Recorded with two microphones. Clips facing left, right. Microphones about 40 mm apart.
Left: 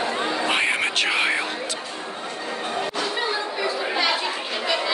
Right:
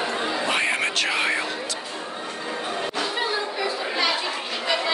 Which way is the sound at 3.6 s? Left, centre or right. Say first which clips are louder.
Left 3 dB; centre.